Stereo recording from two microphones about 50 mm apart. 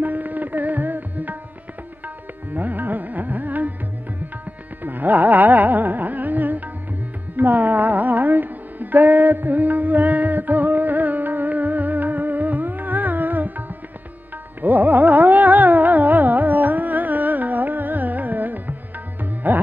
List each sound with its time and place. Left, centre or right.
0.0 s music: right
2.5 s music: right
4.8 s music: right